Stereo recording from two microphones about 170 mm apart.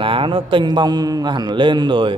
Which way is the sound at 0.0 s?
30° right (ahead or behind).